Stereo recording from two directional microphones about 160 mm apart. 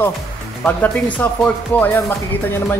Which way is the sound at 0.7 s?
10° left (ahead or behind).